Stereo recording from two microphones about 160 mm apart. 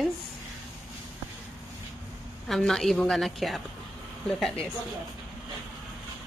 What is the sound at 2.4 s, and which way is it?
A woman's voice, centre (ahead or behind).